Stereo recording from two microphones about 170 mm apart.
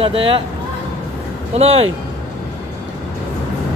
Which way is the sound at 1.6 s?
35° right (ahead or behind).